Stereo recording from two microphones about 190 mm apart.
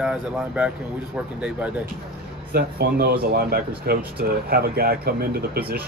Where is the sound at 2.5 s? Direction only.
55° right (ahead or behind).